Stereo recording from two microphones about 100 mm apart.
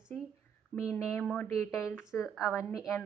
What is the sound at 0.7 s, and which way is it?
Speech, 25° left (ahead or behind).